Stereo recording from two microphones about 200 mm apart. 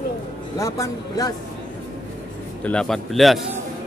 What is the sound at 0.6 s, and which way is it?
Speech, 15° left (ahead or behind).